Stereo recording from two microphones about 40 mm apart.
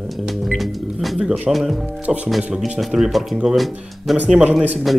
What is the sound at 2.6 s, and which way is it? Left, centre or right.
Speech, centre.